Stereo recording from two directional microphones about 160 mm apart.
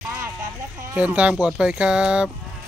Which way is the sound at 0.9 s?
10° right (ahead or behind).